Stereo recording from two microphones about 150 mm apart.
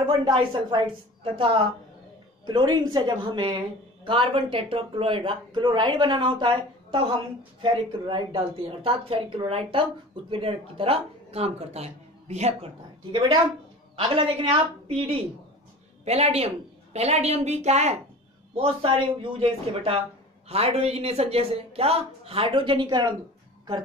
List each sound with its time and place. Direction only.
0.0 s a woman's voice: 35° right (ahead or behind)